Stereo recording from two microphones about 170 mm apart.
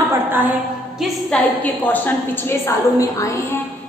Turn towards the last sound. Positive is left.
turn(degrees=20)  # may be behind; listen again after turning